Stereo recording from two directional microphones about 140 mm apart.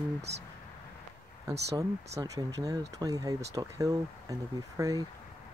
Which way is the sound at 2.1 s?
25° right (ahead or behind).